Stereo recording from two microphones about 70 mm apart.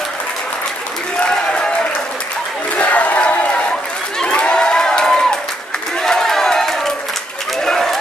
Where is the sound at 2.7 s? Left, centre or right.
Centre.